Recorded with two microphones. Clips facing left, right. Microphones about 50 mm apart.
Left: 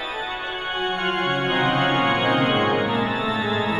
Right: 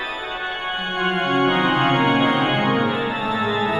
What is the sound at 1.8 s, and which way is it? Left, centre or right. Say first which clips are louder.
Music: right 2 dB; centre.